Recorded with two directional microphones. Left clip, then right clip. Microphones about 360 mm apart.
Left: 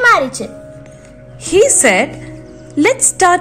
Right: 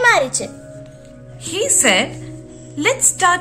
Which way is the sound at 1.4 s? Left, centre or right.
Centre.